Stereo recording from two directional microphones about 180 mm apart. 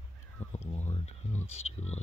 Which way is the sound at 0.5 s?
35° left (ahead or behind).